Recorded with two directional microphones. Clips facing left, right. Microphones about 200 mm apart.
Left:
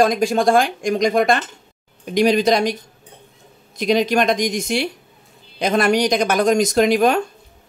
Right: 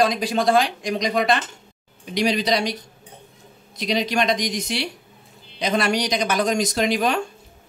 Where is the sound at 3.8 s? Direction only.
50° left (ahead or behind).